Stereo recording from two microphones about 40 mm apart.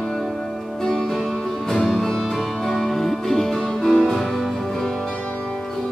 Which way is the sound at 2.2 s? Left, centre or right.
Centre.